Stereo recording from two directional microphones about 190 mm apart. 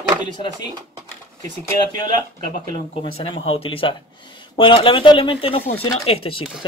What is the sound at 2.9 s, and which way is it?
Speech, 30° left (ahead or behind).